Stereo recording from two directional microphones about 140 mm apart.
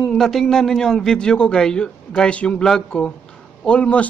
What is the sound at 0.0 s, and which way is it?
A man's voice, 5° left (ahead or behind).